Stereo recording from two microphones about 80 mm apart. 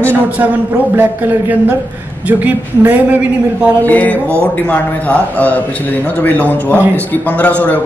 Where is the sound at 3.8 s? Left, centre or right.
Left.